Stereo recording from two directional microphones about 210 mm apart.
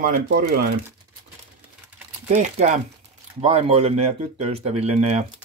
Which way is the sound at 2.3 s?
35° right (ahead or behind).